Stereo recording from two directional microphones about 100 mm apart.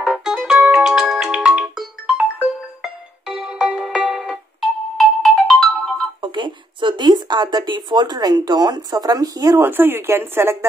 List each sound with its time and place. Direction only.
0.0 s music: 5° right (ahead or behind)
6.2 s speech: 50° right (ahead or behind)
9.6 s speech: 20° right (ahead or behind)